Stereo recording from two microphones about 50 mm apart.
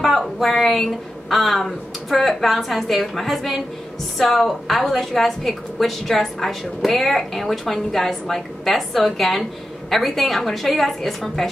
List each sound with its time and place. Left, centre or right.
0.0 s a woman's voice: centre